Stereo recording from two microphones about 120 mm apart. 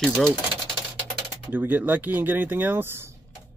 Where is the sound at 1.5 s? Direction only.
15° right (ahead or behind).